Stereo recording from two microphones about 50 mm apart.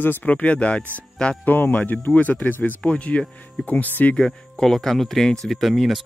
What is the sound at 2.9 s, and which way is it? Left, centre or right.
Speech, left.